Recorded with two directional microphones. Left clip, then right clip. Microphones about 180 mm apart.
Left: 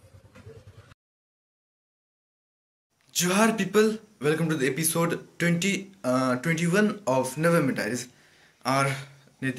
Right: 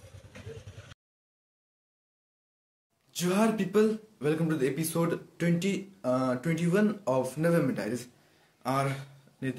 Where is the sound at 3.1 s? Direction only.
5° left (ahead or behind).